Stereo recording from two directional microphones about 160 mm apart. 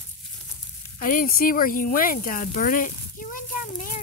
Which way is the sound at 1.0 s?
60° left (ahead or behind).